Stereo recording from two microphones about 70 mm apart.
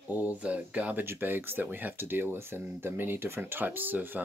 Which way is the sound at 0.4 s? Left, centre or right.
Centre.